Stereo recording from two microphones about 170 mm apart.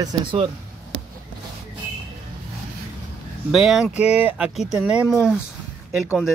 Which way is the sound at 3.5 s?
Centre (ahead or behind).